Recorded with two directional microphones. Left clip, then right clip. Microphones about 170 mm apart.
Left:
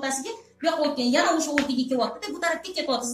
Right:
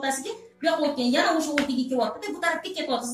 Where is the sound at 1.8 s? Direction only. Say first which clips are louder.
Even; 20° right (ahead or behind).